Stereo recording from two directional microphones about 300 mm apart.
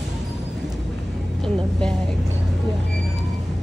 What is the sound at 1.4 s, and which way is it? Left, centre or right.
Speech, centre.